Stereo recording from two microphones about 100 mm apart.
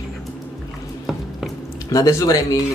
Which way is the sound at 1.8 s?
35° left (ahead or behind).